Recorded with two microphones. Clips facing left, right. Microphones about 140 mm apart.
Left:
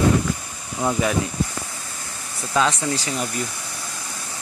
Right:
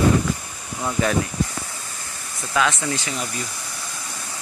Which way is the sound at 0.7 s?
20° left (ahead or behind).